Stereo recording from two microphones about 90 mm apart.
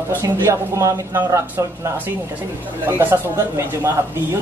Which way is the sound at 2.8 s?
25° right (ahead or behind).